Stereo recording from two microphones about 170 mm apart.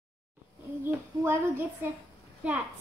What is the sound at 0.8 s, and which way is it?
Speech, 15° right (ahead or behind).